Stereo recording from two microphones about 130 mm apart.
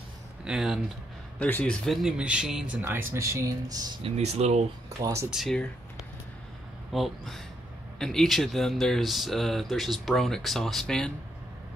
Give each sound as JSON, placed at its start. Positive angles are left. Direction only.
{"t": 0.5, "sound": "speech", "side_deg": -5}
{"t": 1.4, "sound": "speech", "side_deg": 10}
{"t": 1.9, "sound": "speech", "side_deg": 0}
{"t": 4.0, "sound": "speech", "side_deg": -55}
{"t": 4.8, "sound": "speech", "side_deg": -25}
{"t": 5.3, "sound": "speech", "side_deg": 0}
{"t": 6.9, "sound": "speech", "side_deg": 0}